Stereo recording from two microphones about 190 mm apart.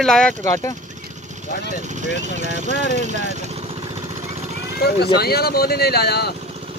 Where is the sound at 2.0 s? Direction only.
40° right (ahead or behind).